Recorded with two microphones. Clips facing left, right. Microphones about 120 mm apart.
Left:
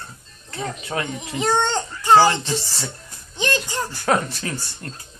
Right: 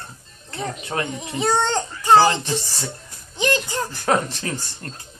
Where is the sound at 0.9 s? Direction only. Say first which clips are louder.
Right 1 dB; 30° right (ahead or behind).